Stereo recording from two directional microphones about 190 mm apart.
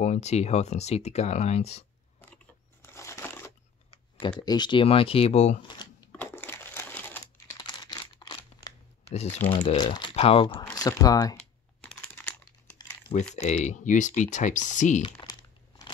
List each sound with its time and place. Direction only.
0.0 s speech: 35° left (ahead or behind)
2.3 s crushing: 15° left (ahead or behind)
4.2 s speech: 25° left (ahead or behind)
6.1 s crushing: 10° left (ahead or behind)
7.5 s camera: 25° left (ahead or behind)
9.5 s speech: 25° left (ahead or behind)
13.4 s speech: 35° left (ahead or behind)
15.0 s speech: 25° left (ahead or behind)